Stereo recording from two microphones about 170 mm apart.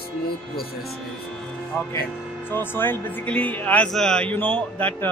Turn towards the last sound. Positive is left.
turn(degrees=10)  # may be behind; listen again after turning